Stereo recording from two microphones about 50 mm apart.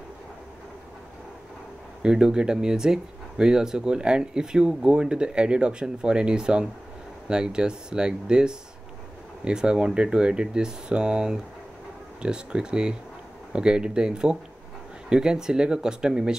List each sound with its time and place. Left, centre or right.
2.0 s speech: centre